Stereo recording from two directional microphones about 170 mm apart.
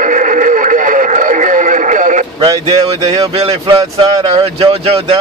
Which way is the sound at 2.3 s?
20° right (ahead or behind).